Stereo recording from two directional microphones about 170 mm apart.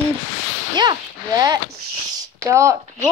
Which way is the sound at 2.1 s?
15° right (ahead or behind).